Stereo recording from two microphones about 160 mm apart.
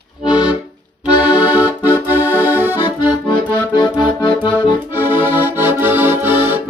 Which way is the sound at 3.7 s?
30° left (ahead or behind).